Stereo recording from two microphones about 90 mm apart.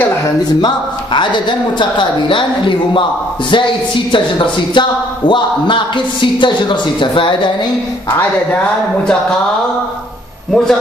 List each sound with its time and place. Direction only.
0.4 s speech: 55° left (ahead or behind)
10.5 s a man's voice: 5° left (ahead or behind)